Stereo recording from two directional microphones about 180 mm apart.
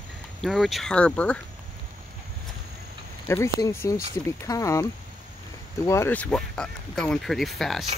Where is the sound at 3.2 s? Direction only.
15° left (ahead or behind).